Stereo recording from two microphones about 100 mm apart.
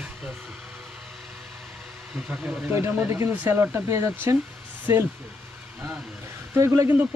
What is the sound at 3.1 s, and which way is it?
Speech, 30° right (ahead or behind).